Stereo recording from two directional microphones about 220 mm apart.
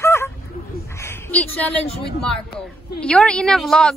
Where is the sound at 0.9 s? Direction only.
10° left (ahead or behind).